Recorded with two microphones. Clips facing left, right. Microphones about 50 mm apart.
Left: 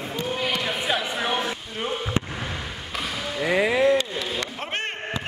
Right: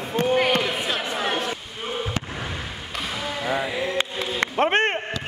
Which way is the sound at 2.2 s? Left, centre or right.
Left.